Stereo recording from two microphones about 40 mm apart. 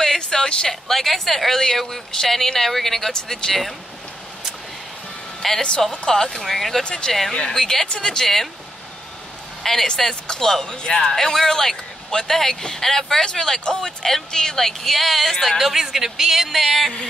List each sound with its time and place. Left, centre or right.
0.0 s speech: centre
5.4 s speech: centre
6.8 s speech: left
7.1 s speech: centre
7.3 s speech: centre
9.6 s speech: centre
15.5 s speech: centre